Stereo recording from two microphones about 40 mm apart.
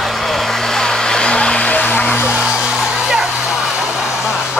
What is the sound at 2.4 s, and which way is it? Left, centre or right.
Music, centre.